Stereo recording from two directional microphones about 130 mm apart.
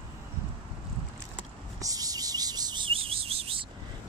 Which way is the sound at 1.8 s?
30° right (ahead or behind).